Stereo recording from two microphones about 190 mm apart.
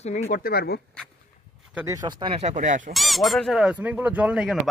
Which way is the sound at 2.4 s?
40° right (ahead or behind).